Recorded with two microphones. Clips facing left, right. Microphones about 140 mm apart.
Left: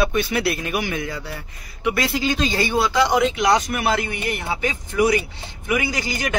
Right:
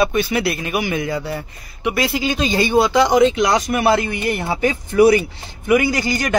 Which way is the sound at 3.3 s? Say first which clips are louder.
Right 2 dB; 35° right (ahead or behind).